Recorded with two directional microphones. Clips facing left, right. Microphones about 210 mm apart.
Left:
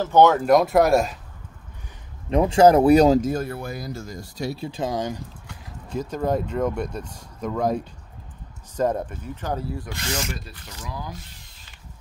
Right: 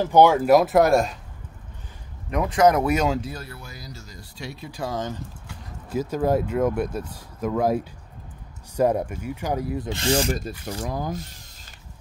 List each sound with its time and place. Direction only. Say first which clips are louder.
0.0 s speech: even; 10° right (ahead or behind)
2.2 s speech: left 4 dB; 30° left (ahead or behind)
4.6 s speech: even; 20° left (ahead or behind)
5.9 s speech: right 2 dB; 5° right (ahead or behind); by 11.1 s 50° right (ahead or behind)